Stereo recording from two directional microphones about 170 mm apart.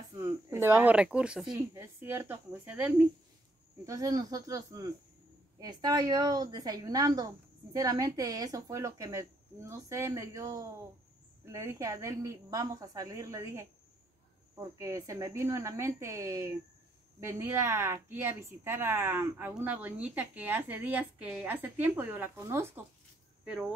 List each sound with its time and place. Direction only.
0.1 s a woman's voice: 20° right (ahead or behind)
3.8 s a woman's voice: 20° right (ahead or behind); by 23.7 s 5° right (ahead or behind)